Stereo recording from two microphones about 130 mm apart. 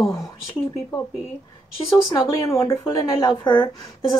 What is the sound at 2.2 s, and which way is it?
A woman's voice, 25° left (ahead or behind).